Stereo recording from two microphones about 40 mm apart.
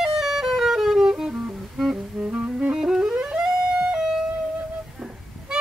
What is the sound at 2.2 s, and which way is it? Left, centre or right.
Music, right.